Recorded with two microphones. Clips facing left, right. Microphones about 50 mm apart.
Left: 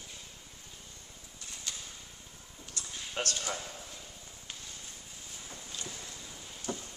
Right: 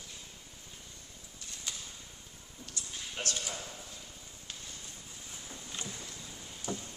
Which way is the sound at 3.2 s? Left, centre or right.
Left.